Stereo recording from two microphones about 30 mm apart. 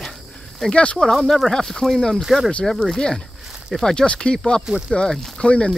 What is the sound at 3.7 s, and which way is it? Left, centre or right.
Speech, centre.